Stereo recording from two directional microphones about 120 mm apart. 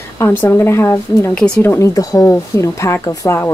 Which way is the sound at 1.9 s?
30° left (ahead or behind).